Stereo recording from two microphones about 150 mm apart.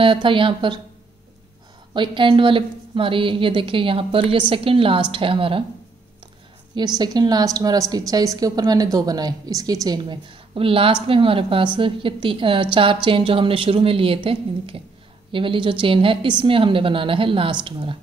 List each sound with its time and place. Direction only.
0.0 s a woman's voice: 35° right (ahead or behind)
2.0 s a woman's voice: 35° right (ahead or behind)
7.0 s a woman's voice: 25° right (ahead or behind)